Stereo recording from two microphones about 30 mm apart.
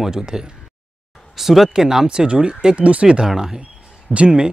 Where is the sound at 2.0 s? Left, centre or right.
Right.